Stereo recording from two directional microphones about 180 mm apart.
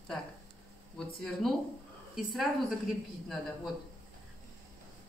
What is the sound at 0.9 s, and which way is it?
Speech, 5° left (ahead or behind).